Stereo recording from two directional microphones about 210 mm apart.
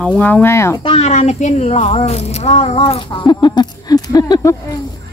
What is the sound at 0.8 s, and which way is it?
Speech, 25° left (ahead or behind).